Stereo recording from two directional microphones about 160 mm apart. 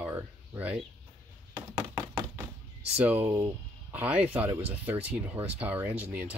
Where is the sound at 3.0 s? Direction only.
10° right (ahead or behind).